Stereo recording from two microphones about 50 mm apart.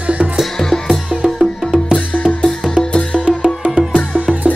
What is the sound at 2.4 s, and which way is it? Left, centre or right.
Music, centre.